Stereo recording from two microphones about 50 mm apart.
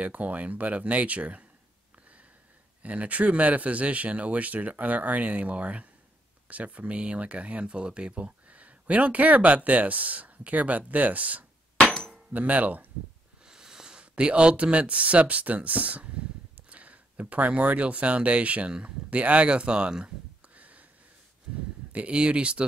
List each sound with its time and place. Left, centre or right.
0.0 s speech: right
2.8 s speech: right
12.1 s a sound: right
13.5 s speech: centre
20.5 s a sound: right
21.9 s speech: right